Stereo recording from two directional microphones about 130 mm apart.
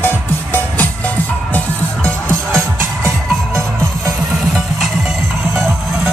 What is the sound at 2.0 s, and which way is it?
Music, 10° left (ahead or behind).